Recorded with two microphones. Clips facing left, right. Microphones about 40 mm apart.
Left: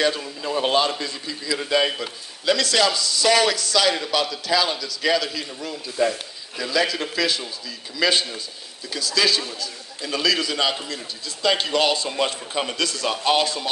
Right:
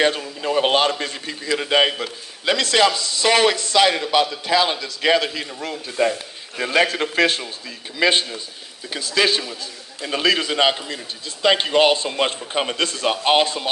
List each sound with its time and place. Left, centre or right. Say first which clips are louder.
0.4 s a man's voice: right 3 dB; right
1.9 s speech: right 2 dB; right
5.6 s a man's voice: right 2 dB; right